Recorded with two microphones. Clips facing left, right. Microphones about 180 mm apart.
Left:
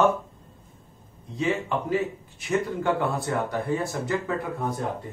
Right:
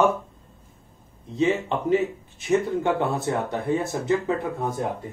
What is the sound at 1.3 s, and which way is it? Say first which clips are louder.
Speech: right 3 dB; 25° right (ahead or behind).